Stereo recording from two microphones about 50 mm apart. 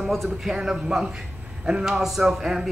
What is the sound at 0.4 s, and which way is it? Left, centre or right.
A man's voice, centre.